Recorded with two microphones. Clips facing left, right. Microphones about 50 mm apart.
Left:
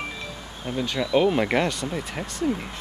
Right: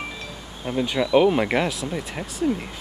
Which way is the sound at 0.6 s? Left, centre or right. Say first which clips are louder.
Right 3 dB; centre.